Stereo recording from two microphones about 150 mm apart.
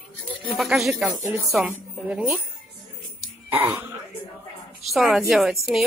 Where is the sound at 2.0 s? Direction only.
5° right (ahead or behind).